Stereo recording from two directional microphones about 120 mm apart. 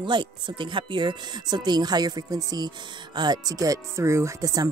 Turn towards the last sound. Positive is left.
turn(degrees=-30)  # may be behind; listen again after turning